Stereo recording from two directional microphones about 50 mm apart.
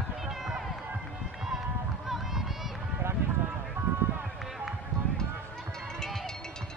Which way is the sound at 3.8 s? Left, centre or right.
Right.